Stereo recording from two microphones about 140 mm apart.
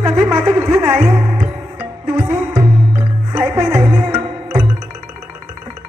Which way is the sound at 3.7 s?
15° right (ahead or behind).